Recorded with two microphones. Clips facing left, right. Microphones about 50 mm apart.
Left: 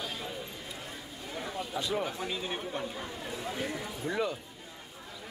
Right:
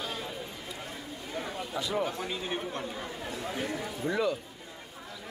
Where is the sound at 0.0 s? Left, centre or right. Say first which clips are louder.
Right 2 dB; centre.